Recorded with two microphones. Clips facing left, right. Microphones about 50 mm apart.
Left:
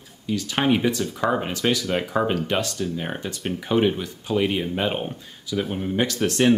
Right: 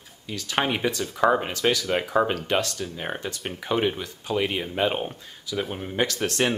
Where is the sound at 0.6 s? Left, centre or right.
Centre.